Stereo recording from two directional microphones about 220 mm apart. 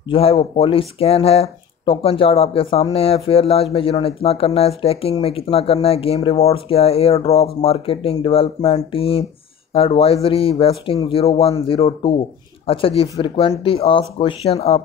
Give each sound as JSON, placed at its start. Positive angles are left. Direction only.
{"t": 0.1, "sound": "speech", "side_deg": 25}